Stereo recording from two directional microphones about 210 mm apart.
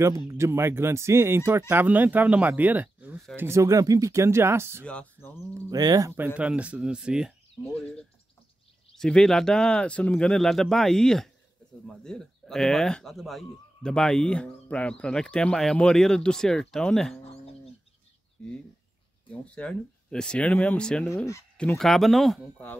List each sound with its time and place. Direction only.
0.0 s speech: 15° right (ahead or behind)
4.8 s speech: 5° left (ahead or behind)
5.5 s speech: 20° right (ahead or behind); by 17.2 s centre (ahead or behind)
19.5 s speech: 5° left (ahead or behind)